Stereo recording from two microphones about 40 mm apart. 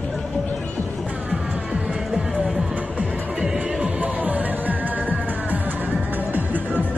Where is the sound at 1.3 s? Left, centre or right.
Right.